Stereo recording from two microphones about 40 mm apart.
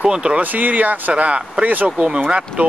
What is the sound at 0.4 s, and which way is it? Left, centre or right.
Speech, right.